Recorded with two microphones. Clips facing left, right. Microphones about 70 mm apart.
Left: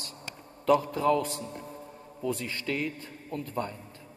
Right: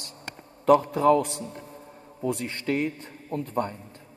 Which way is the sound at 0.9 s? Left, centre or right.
Right.